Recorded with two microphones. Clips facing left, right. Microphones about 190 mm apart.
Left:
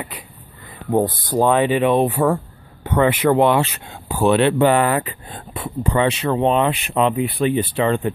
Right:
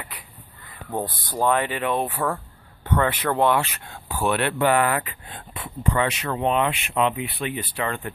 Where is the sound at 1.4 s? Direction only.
20° left (ahead or behind).